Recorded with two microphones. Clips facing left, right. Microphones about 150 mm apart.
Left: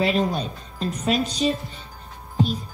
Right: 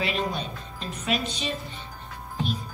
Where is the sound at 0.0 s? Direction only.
40° left (ahead or behind).